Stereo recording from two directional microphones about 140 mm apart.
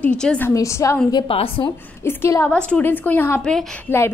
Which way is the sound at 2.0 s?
20° left (ahead or behind).